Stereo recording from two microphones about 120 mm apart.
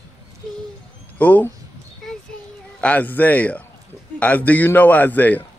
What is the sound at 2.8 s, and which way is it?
A man's voice, 15° left (ahead or behind).